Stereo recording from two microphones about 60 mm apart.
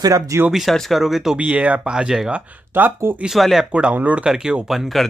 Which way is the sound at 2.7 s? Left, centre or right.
Right.